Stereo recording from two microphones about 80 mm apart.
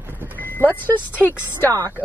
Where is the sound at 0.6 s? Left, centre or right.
Left.